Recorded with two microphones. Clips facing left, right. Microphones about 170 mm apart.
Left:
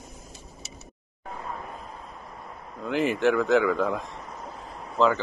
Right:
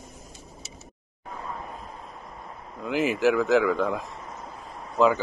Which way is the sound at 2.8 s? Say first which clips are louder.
Even; centre (ahead or behind).